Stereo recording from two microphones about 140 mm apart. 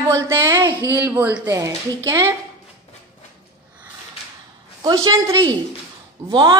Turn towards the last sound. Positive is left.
turn(degrees=-35)  # may be behind; listen again after turning